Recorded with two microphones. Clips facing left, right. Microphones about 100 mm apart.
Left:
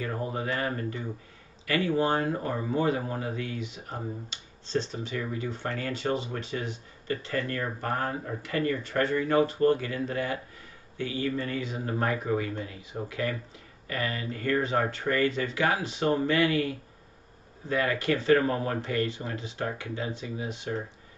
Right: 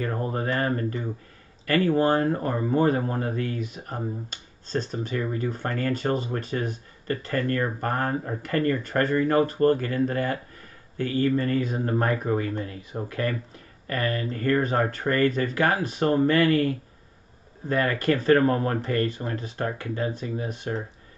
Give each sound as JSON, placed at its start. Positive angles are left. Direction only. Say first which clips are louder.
{"t": 0.0, "sound": "speech", "louder": "right 4 dB", "side_deg": -45}